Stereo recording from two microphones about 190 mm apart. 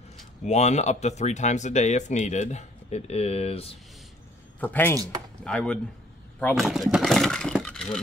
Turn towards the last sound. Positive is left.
turn(degrees=5)  # may be behind; listen again after turning